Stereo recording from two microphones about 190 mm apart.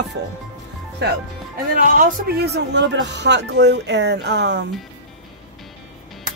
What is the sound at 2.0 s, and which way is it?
Speech, 50° right (ahead or behind).